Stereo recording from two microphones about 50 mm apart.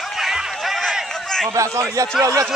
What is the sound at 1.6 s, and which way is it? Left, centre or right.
Speech, right.